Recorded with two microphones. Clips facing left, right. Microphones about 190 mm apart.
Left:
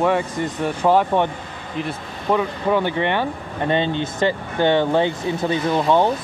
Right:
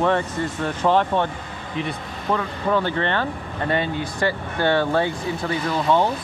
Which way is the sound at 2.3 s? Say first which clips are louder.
Left 3 dB; 15° left (ahead or behind).